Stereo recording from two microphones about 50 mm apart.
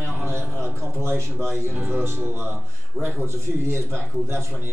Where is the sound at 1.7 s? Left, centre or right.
Right.